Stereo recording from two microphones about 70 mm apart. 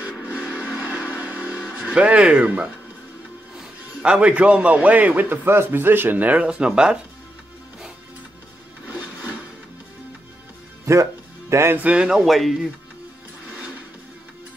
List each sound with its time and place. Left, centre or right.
0.0 s vehicle: centre
3.5 s a man's voice: centre
6.4 s speech: centre
8.8 s a sound: right
10.9 s music: right
11.7 s speech: centre